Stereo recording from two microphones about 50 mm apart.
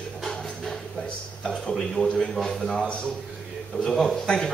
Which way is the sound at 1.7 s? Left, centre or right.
Centre.